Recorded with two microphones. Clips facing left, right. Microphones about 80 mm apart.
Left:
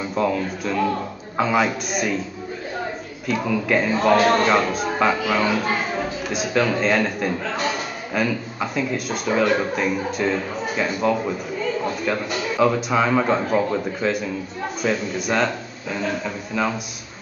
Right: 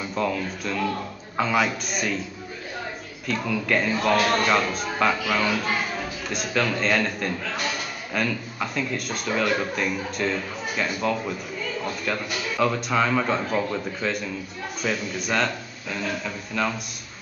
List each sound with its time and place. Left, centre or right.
0.0 s speech: centre
3.3 s speech: centre
4.2 s a man's voice: left
4.5 s speech: centre
5.7 s a sound: left
6.2 s speech: centre
7.4 s speech: left
8.1 s a man's voice: centre
14.8 s speech: centre